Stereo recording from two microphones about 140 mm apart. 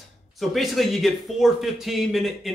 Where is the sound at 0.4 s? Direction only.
Centre (ahead or behind).